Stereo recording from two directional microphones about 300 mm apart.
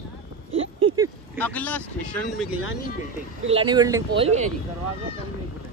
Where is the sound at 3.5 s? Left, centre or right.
Centre.